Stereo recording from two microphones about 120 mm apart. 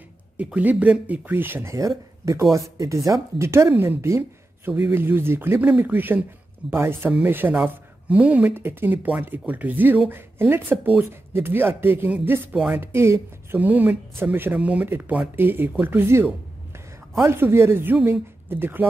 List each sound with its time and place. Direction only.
0.4 s speech: 10° right (ahead or behind)